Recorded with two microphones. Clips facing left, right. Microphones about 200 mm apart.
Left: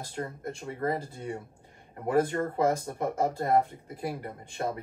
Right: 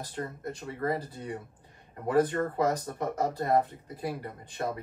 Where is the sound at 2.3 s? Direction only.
25° left (ahead or behind).